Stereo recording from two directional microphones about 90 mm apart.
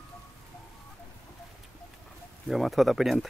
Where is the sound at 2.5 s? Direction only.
Centre (ahead or behind).